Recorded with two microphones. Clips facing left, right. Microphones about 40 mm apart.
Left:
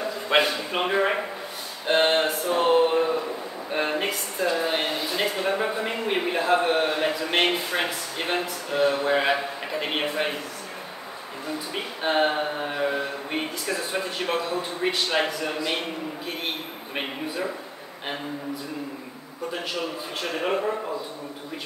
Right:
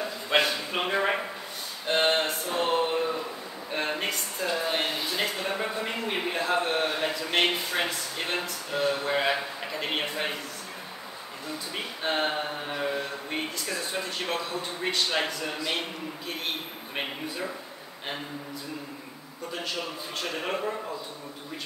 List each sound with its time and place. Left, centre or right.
0.3 s a man's voice: centre
1.9 s a sound: centre
3.7 s speech: centre
11.7 s speech: centre
19.5 s speech: centre